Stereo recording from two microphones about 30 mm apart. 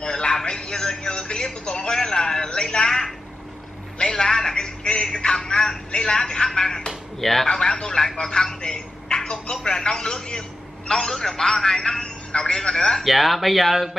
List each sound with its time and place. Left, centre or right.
0.0 s a sound: left
4.0 s a sound: left
4.4 s music: left
5.2 s telephone: left
7.2 s speech: centre
7.5 s a man's voice: left
8.5 s a sound: left
9.7 s a man's voice: left
13.0 s speech: centre